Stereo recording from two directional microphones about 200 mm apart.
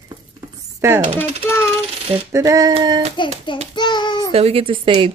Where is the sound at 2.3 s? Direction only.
15° right (ahead or behind).